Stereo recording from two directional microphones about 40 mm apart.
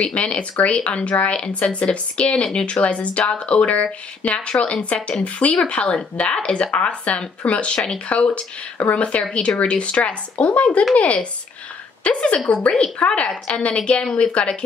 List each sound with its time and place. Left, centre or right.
0.0 s a woman's voice: left